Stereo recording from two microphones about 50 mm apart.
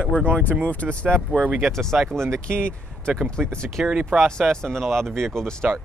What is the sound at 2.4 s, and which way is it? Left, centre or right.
Speech, centre.